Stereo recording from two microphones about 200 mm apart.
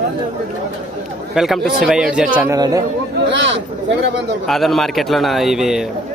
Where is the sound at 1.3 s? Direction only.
Centre (ahead or behind).